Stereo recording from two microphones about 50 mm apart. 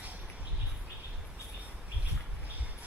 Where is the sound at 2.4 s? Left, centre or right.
Right.